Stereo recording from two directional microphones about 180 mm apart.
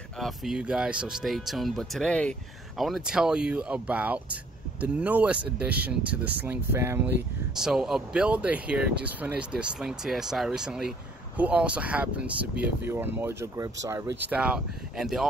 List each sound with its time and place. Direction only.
0.2 s speech: 5° right (ahead or behind)
7.5 s speech: centre (ahead or behind)
14.4 s speech: 5° right (ahead or behind)